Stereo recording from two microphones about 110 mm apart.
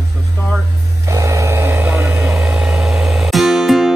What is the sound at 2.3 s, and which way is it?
Music, 5° right (ahead or behind).